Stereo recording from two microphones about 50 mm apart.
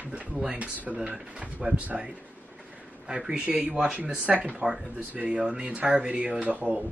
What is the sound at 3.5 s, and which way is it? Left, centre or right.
Speech, right.